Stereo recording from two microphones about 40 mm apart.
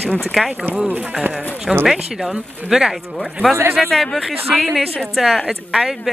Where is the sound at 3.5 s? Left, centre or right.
Right.